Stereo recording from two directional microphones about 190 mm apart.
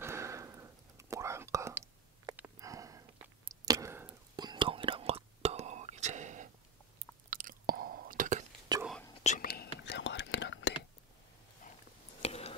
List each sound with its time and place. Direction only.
0.0 s whispering: 15° right (ahead or behind); by 6.5 s 40° right (ahead or behind)
7.2 s chewing: 45° right (ahead or behind)
8.7 s whispering: 20° right (ahead or behind)
9.2 s whispering: 40° left (ahead or behind)
9.8 s whispering: 70° left (ahead or behind)
12.2 s a sound: 30° left (ahead or behind)